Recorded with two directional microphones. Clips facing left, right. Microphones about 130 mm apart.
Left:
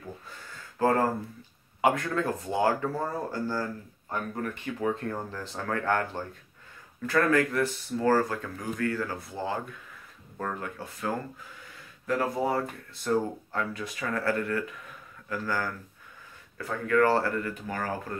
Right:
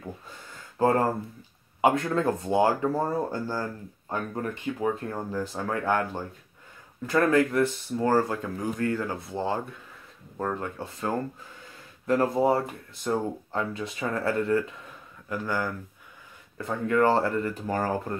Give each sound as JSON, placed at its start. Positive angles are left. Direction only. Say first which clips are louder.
{"t": 0.7, "sound": "speech", "louder": "right 2 dB", "side_deg": -25}
{"t": 5.0, "sound": "speech", "louder": "right 3 dB", "side_deg": -10}
{"t": 17.6, "sound": "speech", "louder": "right 6 dB", "side_deg": -35}